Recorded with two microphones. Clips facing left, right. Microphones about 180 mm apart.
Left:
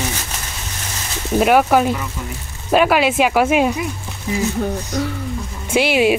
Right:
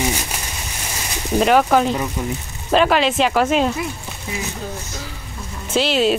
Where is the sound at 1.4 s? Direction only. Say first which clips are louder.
Left 1 dB; 5° left (ahead or behind).